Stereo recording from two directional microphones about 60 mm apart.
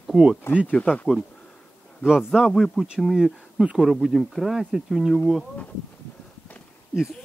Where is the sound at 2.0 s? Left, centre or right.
Centre.